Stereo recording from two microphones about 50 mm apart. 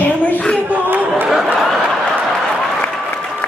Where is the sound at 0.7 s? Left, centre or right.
Right.